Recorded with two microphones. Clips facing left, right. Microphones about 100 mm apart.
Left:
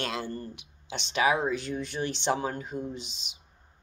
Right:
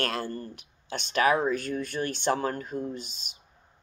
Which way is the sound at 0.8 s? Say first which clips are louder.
Right 2 dB; 50° right (ahead or behind).